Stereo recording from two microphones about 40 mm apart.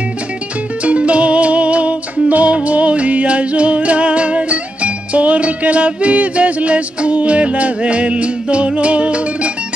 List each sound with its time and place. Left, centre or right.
0.8 s music: right